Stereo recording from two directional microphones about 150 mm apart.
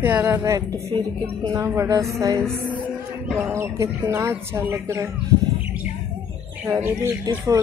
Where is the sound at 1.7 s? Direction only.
20° right (ahead or behind).